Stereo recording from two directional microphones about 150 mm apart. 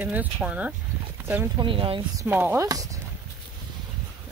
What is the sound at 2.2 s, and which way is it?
Speech, 10° right (ahead or behind).